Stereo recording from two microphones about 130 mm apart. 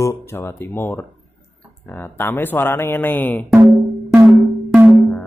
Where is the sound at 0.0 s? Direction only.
20° left (ahead or behind).